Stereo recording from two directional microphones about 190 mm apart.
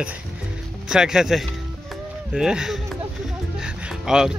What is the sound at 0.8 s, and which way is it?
Speech, 5° right (ahead or behind).